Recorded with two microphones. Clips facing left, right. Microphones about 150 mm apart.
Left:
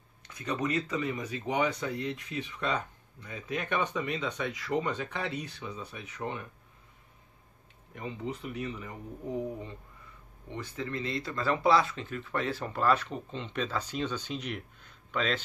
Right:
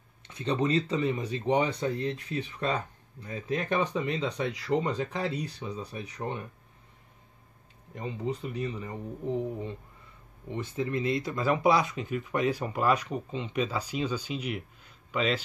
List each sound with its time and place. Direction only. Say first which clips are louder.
0.3 s speech: right 4 dB; 25° right (ahead or behind)
7.9 s speech: right 4 dB; 35° right (ahead or behind)
10.5 s speech: right 5 dB; 20° right (ahead or behind)